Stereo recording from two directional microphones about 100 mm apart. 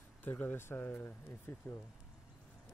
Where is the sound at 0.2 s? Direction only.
20° left (ahead or behind).